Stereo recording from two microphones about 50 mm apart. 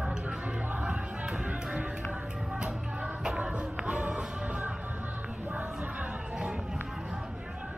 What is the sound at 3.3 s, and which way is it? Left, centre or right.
Music, right.